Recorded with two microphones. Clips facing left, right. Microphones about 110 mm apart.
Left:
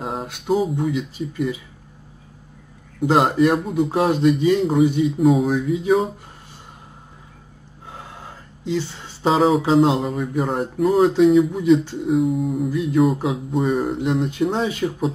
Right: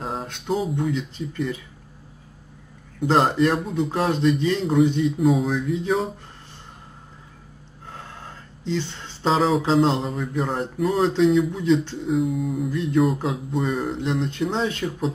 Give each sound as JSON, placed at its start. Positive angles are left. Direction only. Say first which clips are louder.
{"t": 0.0, "sound": "speech", "louder": "left 2 dB", "side_deg": 5}
{"t": 3.0, "sound": "speech", "louder": "left 2 dB", "side_deg": 5}
{"t": 7.9, "sound": "speech", "louder": "left 1 dB", "side_deg": 10}